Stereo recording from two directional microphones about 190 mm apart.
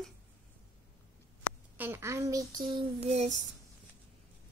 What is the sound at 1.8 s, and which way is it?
Speech, 10° right (ahead or behind).